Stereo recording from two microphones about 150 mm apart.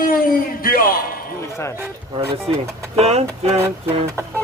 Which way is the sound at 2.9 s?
45° right (ahead or behind).